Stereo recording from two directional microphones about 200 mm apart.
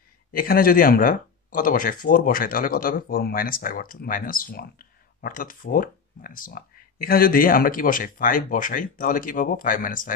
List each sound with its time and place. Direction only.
0.3 s speech: 45° left (ahead or behind)